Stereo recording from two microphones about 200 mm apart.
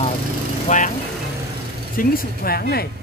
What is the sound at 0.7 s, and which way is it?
Speech, 40° left (ahead or behind).